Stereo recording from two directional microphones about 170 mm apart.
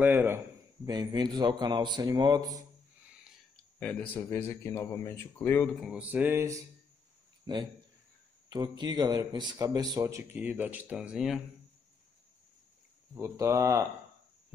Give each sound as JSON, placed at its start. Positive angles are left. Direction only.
{"t": 0.0, "sound": "music", "side_deg": -10}
{"t": 0.8, "sound": "a man's voice", "side_deg": -25}
{"t": 3.8, "sound": "speech", "side_deg": 10}
{"t": 5.8, "sound": "music", "side_deg": -5}
{"t": 7.5, "sound": "a man's voice", "side_deg": -25}
{"t": 13.1, "sound": "a man's voice", "side_deg": -15}